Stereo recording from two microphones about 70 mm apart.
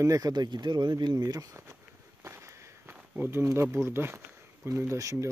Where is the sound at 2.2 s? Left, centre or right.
Right.